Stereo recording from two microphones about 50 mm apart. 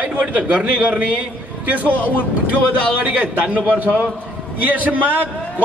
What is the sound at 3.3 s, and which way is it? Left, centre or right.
A man's voice, right.